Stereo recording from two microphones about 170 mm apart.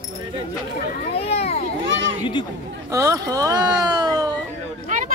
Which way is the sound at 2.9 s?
20° right (ahead or behind).